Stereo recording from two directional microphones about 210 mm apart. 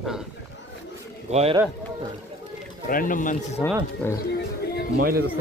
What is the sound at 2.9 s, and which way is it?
Speech, 40° left (ahead or behind).